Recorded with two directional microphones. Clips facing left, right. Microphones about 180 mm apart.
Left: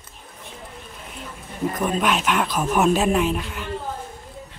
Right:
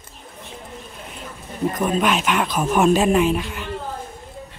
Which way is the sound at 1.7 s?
Centre (ahead or behind).